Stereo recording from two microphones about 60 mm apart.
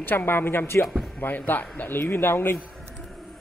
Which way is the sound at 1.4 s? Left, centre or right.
Left.